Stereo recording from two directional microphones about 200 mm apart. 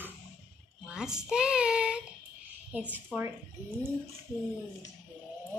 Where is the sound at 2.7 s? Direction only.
5° right (ahead or behind).